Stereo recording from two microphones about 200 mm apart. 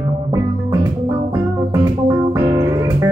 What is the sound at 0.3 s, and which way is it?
Music, 15° right (ahead or behind).